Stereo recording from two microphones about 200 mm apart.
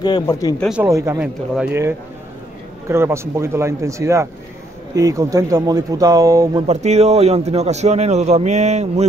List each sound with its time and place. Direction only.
0.0 s speech: 20° left (ahead or behind)
0.6 s speech: 5° right (ahead or behind)
0.8 s speech: 15° right (ahead or behind)
6.7 s a man's voice: 35° right (ahead or behind)